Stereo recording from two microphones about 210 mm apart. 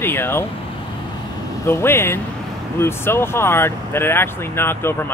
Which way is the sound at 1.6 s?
10° left (ahead or behind).